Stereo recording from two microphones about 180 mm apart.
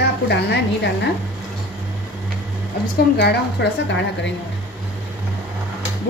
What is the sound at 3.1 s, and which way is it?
A woman's voice, 70° left (ahead or behind).